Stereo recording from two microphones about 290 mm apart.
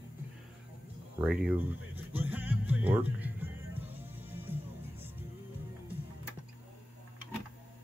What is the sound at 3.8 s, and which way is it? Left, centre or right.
Music, centre.